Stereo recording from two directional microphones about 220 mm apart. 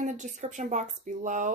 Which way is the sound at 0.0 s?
35° right (ahead or behind).